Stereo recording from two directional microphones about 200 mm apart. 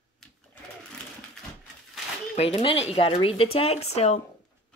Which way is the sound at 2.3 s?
30° left (ahead or behind).